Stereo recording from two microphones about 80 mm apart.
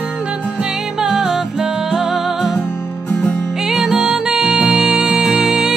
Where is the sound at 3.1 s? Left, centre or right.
Centre.